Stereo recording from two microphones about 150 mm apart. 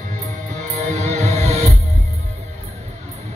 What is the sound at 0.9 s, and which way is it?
Music, 45° right (ahead or behind).